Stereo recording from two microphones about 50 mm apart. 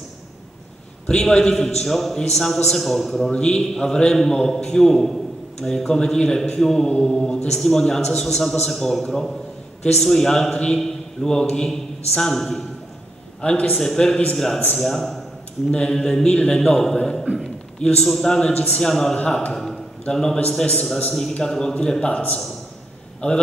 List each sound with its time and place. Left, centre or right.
1.0 s a man's voice: centre
3.3 s a man's voice: centre
19.5 s a sound: centre
20.4 s a man's voice: centre